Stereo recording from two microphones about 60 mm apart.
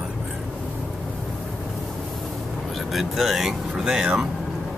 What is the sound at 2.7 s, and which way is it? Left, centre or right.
Speech, centre.